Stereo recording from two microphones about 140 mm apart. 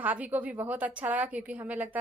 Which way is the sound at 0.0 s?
10° right (ahead or behind).